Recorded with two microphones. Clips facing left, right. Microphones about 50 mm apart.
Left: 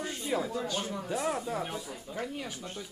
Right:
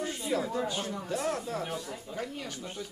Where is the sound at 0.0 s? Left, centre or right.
Centre.